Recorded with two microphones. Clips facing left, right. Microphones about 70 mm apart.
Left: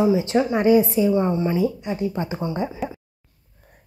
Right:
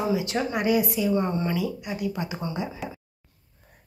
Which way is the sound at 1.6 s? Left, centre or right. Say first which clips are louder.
Left 6 dB; left.